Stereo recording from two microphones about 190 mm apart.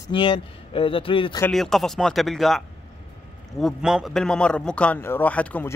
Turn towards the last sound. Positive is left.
turn(degrees=10)  # may be behind; listen again after turning